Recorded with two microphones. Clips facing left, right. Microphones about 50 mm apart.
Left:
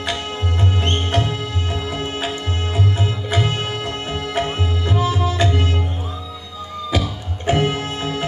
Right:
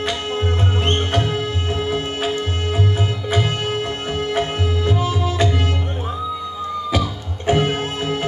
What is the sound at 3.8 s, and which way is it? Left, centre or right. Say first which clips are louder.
Music: right 2 dB; right.